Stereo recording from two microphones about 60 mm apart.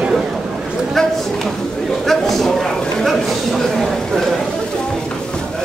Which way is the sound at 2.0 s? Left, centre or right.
Centre.